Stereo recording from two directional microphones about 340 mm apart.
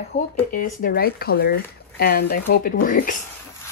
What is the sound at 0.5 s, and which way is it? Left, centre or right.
Speech, left.